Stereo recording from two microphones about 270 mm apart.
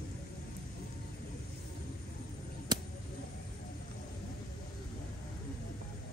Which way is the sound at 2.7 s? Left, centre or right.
Centre.